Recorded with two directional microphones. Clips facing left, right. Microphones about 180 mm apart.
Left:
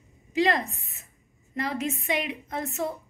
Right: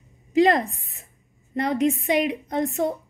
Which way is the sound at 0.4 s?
40° right (ahead or behind).